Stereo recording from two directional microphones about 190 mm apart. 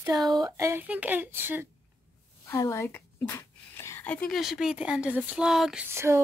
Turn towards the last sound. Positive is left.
turn(degrees=-15)  # may be behind; listen again after turning